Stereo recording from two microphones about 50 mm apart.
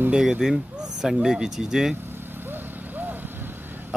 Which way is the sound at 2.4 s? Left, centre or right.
Right.